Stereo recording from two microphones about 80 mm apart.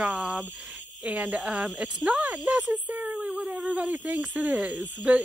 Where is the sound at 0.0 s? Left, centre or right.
Centre.